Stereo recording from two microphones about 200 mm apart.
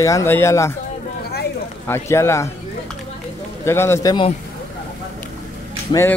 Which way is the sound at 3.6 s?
15° left (ahead or behind).